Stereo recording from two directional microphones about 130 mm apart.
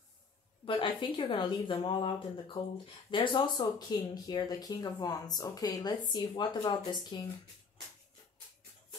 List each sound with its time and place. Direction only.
0.7 s speech: 40° left (ahead or behind)